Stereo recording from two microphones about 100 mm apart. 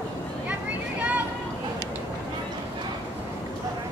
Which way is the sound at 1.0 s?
15° right (ahead or behind).